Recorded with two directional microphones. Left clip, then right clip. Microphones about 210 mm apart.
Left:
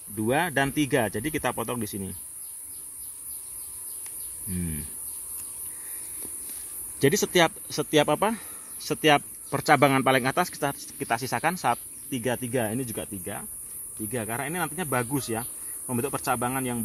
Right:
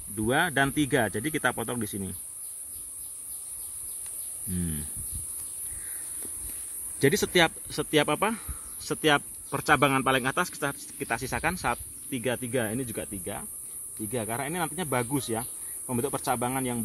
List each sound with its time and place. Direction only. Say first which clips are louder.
0.1 s speech: left 1 dB; 5° left (ahead or behind)
4.6 s cricket: even; 5° right (ahead or behind)
7.0 s speech: left 1 dB; 10° left (ahead or behind)
12.4 s speech: left 2 dB; 25° left (ahead or behind)
13.0 s speech: left 1 dB; 10° left (ahead or behind)